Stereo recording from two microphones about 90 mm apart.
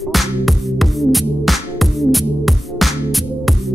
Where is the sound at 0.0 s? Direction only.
Centre (ahead or behind).